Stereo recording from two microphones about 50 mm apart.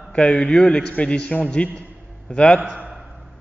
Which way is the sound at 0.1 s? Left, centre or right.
Left.